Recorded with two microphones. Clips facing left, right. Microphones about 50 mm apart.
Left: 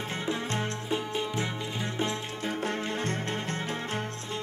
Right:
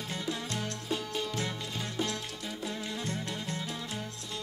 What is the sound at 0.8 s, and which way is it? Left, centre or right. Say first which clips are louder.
Music: left 3 dB; left.